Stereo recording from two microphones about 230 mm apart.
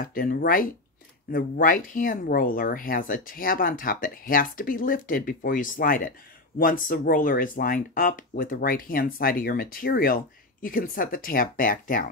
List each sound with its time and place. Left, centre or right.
0.0 s speech: left